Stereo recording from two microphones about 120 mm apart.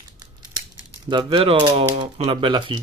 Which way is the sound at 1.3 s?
50° right (ahead or behind).